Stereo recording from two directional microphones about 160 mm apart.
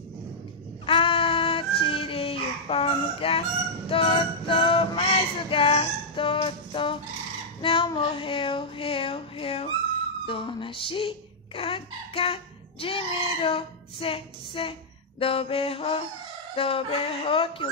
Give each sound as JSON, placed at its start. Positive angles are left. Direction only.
{"t": 0.8, "sound": "child singing", "side_deg": 35}
{"t": 1.8, "sound": "fowl", "side_deg": 35}
{"t": 3.9, "sound": "music", "side_deg": 35}
{"t": 7.6, "sound": "child singing", "side_deg": 30}
{"t": 10.2, "sound": "speech", "side_deg": 35}